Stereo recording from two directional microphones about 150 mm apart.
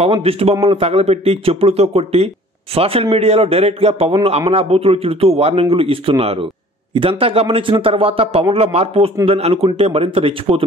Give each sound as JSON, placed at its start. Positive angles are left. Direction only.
{"t": 0.0, "sound": "a man's voice", "side_deg": -40}